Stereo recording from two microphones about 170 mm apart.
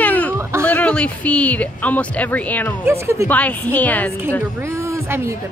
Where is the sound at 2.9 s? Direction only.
15° right (ahead or behind).